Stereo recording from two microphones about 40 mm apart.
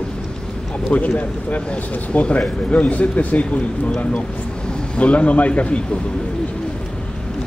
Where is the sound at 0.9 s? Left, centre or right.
Left.